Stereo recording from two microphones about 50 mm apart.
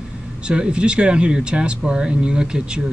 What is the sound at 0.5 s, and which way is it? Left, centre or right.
Speech, centre.